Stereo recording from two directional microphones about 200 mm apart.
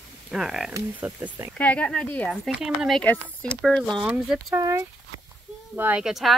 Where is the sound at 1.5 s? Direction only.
5° left (ahead or behind).